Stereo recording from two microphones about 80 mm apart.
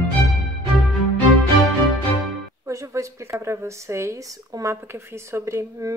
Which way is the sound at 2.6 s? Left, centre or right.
Right.